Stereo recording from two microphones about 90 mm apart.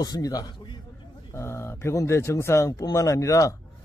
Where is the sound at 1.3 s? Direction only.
30° left (ahead or behind).